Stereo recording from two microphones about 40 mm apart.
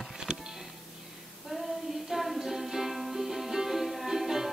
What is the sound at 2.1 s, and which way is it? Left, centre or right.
Music, centre.